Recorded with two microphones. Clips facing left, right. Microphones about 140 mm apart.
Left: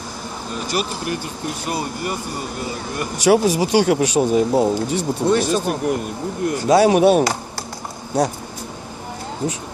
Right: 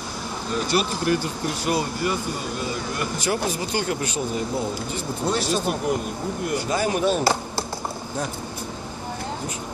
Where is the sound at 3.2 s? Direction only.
90° left.